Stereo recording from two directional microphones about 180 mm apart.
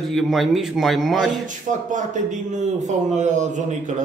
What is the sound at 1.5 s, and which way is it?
A man's voice, 45° right (ahead or behind).